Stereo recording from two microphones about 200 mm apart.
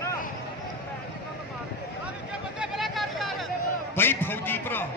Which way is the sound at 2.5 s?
Centre (ahead or behind).